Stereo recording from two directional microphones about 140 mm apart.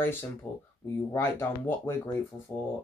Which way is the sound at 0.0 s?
15° left (ahead or behind).